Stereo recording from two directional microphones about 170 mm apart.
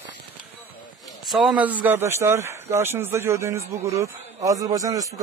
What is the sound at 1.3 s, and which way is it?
A man's voice, centre (ahead or behind).